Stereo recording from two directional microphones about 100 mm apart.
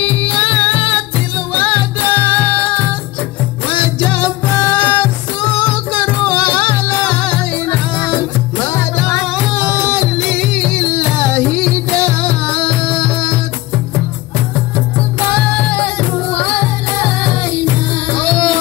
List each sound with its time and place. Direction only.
0.0 s music: 15° left (ahead or behind)
4.0 s music: 15° left (ahead or behind)
4.6 s music: 30° left (ahead or behind)
5.6 s music: 10° left (ahead or behind)
15.0 s music: 10° left (ahead or behind)